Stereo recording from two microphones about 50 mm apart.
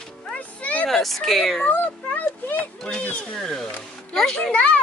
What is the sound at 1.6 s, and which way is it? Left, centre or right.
Speech, left.